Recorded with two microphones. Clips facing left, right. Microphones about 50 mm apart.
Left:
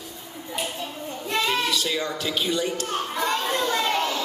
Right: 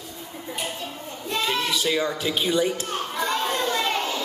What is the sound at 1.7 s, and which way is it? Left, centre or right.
Speech, centre.